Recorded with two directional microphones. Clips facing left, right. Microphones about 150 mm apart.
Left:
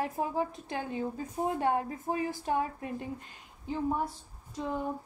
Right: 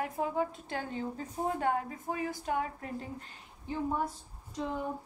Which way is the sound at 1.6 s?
25° left (ahead or behind).